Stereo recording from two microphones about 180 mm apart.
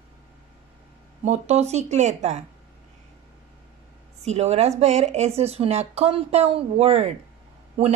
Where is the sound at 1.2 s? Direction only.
40° right (ahead or behind).